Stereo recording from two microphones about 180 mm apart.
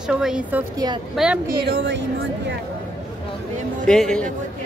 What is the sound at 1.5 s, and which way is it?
Speech, 65° right (ahead or behind).